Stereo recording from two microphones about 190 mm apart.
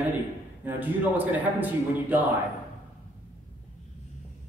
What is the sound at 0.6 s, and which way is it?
A woman's voice, 10° right (ahead or behind).